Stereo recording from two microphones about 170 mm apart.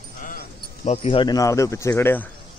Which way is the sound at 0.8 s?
35° left (ahead or behind).